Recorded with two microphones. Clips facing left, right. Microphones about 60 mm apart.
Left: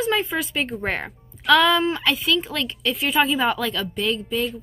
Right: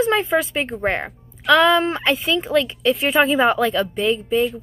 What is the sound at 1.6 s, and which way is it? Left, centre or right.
Speech, right.